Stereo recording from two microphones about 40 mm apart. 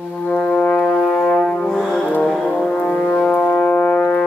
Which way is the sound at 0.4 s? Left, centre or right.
Centre.